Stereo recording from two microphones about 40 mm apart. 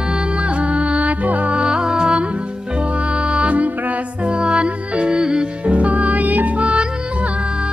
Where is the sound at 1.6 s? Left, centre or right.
Right.